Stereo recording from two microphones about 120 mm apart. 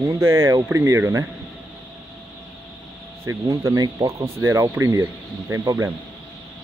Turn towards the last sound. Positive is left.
turn(degrees=-25)  # may be behind; listen again after turning